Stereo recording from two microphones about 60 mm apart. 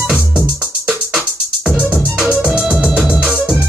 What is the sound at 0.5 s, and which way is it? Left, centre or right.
Music, right.